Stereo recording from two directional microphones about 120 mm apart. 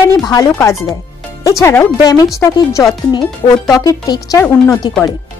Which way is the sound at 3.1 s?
35° left (ahead or behind).